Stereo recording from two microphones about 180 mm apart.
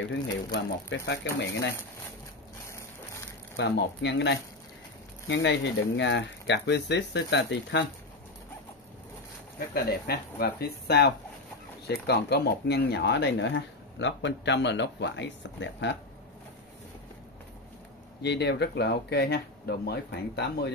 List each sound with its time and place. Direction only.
0.5 s speech: 80° left
3.5 s speech: 65° left (ahead or behind)
9.8 s speech: 60° left (ahead or behind); by 16.0 s 75° left (ahead or behind)
18.2 s speech: 70° left (ahead or behind)